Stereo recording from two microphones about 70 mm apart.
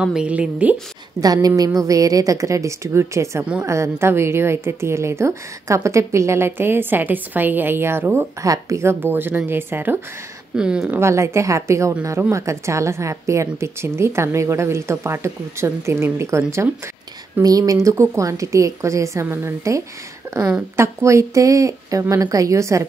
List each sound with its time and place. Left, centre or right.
0.0 s a woman's voice: centre
1.2 s a woman's voice: right
8.4 s a woman's voice: right
9.0 s a woman's voice: right
10.5 s a woman's voice: centre
11.0 s a woman's voice: right
17.4 s a woman's voice: right
20.3 s a sound: right
20.7 s a woman's voice: right